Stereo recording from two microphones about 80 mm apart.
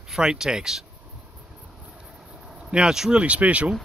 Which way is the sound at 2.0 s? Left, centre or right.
Centre.